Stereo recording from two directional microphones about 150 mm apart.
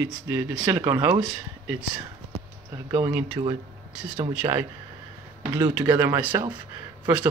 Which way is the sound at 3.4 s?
25° right (ahead or behind).